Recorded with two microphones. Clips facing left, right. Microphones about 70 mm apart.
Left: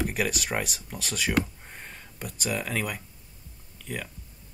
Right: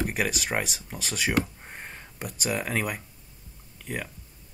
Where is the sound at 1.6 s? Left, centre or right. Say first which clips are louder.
Right 2 dB; centre.